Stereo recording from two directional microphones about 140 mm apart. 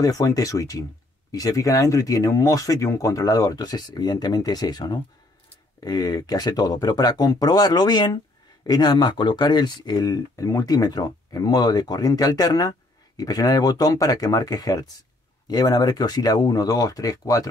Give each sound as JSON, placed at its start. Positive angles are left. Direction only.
{"t": 0.0, "sound": "speech", "side_deg": 25}